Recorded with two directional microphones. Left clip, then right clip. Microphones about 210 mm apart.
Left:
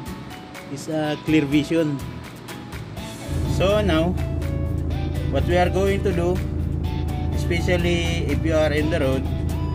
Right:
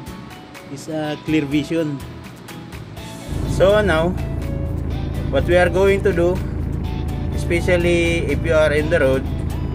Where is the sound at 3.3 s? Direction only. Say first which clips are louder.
Right 5 dB; centre (ahead or behind).